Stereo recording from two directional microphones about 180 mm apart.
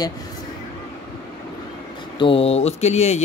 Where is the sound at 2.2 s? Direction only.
30° left (ahead or behind).